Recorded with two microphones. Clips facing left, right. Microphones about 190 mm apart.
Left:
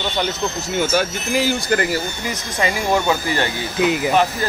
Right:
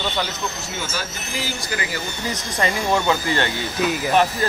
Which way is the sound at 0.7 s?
65° left (ahead or behind).